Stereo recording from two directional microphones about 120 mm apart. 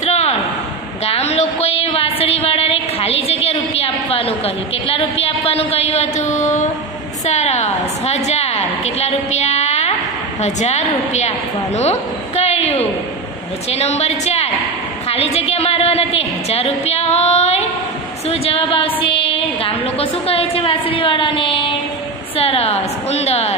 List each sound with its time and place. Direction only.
0.0 s a sound: 65° left (ahead or behind)
4.8 s a woman's voice: 55° left (ahead or behind); by 6.6 s 80° left
7.2 s a woman's voice: 70° left (ahead or behind)
18.3 s a woman's voice: 55° left (ahead or behind)